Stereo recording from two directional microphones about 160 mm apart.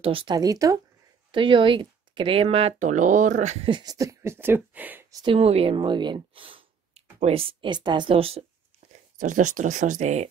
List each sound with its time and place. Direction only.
0.0 s speech: 30° right (ahead or behind)
1.3 s speech: 30° right (ahead or behind); by 3.5 s 50° right (ahead or behind)
3.6 s speech: 25° right (ahead or behind); by 5.0 s 10° right (ahead or behind)
5.1 s speech: 30° right (ahead or behind)
9.2 s speech: 50° right (ahead or behind)